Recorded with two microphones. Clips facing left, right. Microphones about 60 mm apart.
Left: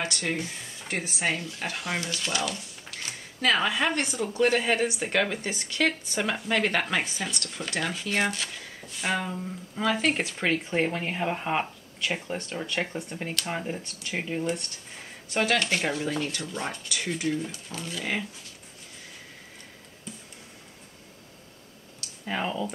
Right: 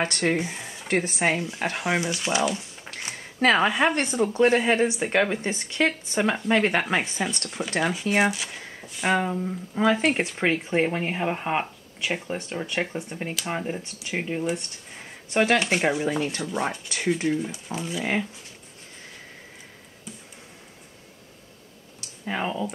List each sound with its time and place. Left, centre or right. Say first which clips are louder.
0.0 s speech: right 6 dB; right
0.4 s speech: right 5 dB; right
0.8 s speech: right 8 dB; right
1.2 s a woman's voice: right 5 dB; right
4.4 s speech: right 3 dB; centre
7.2 s speech: right 5 dB; right
7.4 s speech: right 5 dB; centre
15.2 s speech: right 4 dB; right
22.2 s speech: right 2 dB; centre